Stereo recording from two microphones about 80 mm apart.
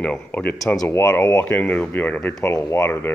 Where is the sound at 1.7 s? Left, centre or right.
Centre.